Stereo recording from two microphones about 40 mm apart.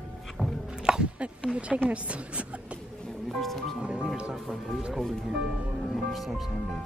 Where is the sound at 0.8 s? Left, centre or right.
Centre.